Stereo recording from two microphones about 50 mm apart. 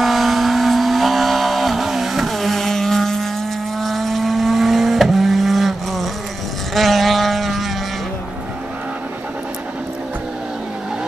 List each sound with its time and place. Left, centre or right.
0.0 s vehicle: centre